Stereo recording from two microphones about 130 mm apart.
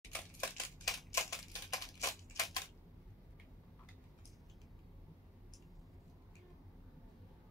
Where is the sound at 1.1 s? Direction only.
25° left (ahead or behind).